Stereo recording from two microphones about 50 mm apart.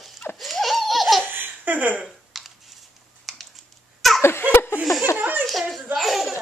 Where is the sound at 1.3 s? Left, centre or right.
Right.